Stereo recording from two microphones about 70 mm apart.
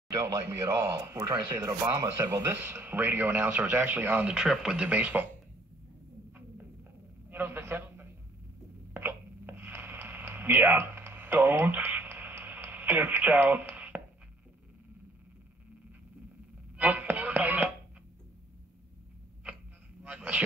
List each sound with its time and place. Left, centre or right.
0.1 s speech: right
2.6 s speech: right
4.3 s speech: centre
7.2 s a sound: right
16.7 s chopping: right
20.0 s a sound: centre